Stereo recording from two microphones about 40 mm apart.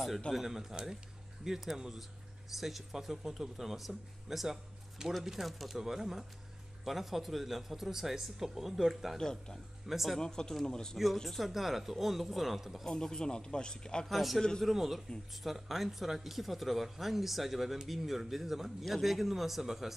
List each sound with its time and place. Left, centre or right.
0.3 s speech: centre
9.2 s a man's voice: centre
9.8 s speech: centre
10.1 s a man's voice: centre
11.2 s speech: centre
12.8 s a man's voice: centre
14.0 s speech: centre